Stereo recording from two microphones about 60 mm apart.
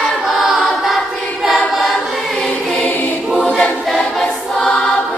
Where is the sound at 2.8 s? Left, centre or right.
Left.